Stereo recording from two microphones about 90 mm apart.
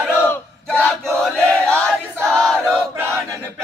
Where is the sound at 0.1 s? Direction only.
25° left (ahead or behind).